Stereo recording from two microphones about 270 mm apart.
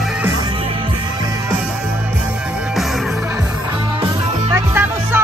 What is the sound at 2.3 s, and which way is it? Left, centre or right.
Music, centre.